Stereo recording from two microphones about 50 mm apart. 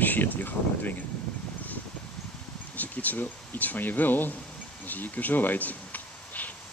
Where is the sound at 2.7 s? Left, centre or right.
Left.